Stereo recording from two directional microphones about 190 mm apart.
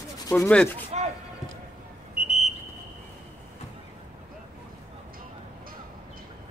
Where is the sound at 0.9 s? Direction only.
30° right (ahead or behind).